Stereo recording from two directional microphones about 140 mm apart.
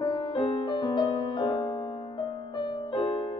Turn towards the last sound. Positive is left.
turn(degrees=35)  # may be behind; listen again after turning